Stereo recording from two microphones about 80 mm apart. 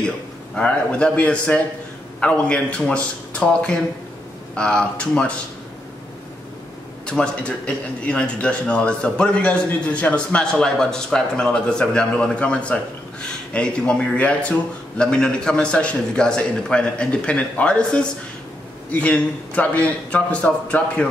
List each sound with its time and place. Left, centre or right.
0.6 s a man's voice: centre
7.1 s a man's voice: centre